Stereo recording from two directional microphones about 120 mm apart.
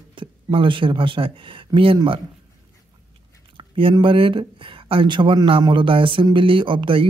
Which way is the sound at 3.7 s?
45° right (ahead or behind).